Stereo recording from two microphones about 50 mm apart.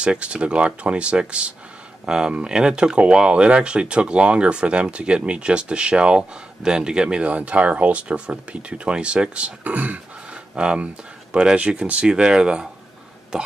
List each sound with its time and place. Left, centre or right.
0.0 s speech: right
10.3 s a sound: centre
11.3 s speech: right